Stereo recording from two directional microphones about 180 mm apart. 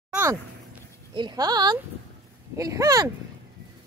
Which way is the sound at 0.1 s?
15° right (ahead or behind).